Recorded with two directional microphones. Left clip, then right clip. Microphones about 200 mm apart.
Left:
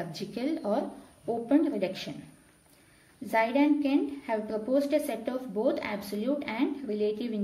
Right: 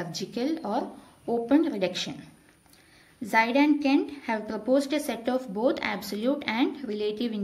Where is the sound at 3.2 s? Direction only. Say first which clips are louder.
Right 3 dB; 15° right (ahead or behind).